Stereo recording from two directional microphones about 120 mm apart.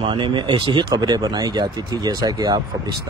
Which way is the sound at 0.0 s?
40° right (ahead or behind).